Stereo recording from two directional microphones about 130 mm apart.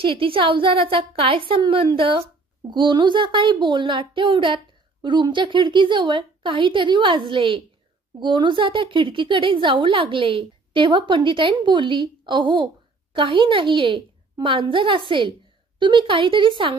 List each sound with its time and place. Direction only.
0.0 s a woman's voice: 45° right (ahead or behind)